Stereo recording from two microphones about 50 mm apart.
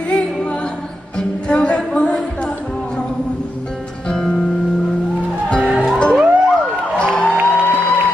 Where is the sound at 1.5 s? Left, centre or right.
Centre.